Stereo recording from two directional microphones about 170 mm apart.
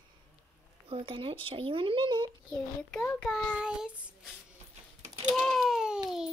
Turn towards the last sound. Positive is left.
turn(degrees=-5)  # may be behind; listen again after turning